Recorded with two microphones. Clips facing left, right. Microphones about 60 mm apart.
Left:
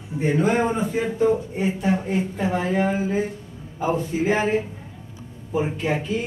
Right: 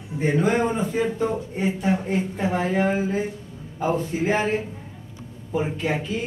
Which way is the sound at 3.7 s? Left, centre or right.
Centre.